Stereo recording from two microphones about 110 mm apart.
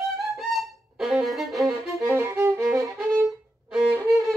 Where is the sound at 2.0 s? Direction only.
20° right (ahead or behind).